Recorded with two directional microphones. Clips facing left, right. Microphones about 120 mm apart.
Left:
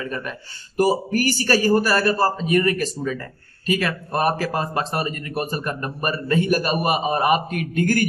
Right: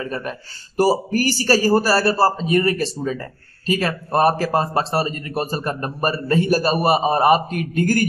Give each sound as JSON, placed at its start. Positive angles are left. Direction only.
{"t": 0.0, "sound": "a man's voice", "side_deg": -35}